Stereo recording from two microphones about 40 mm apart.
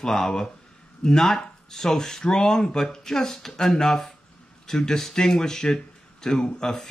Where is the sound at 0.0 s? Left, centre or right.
Centre.